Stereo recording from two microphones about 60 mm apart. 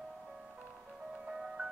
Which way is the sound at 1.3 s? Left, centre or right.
Centre.